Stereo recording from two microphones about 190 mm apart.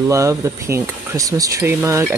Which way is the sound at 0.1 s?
15° right (ahead or behind).